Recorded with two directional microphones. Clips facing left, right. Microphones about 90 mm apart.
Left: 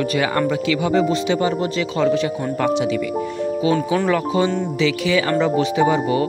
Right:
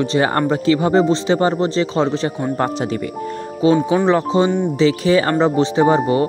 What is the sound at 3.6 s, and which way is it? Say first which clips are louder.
Speech: right 6 dB; 25° right (ahead or behind).